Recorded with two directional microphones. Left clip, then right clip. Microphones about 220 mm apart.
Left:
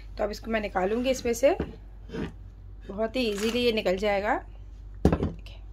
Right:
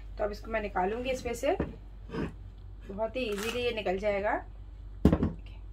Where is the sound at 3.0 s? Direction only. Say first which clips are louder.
Left 5 dB; 50° left (ahead or behind).